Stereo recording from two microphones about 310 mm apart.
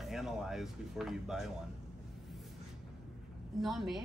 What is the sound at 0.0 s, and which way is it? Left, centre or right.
Speech, centre.